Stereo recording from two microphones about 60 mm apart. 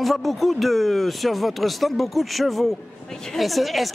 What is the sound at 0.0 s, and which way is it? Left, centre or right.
Speech, centre.